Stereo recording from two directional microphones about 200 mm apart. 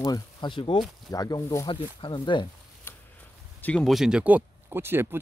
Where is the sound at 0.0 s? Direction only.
20° left (ahead or behind).